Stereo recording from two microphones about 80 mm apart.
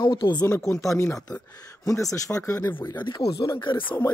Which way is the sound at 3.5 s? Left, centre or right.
Left.